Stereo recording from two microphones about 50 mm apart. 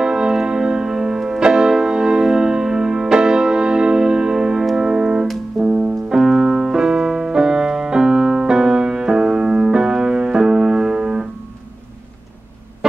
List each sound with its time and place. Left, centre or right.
0.0 s music: centre
6.0 s piano: centre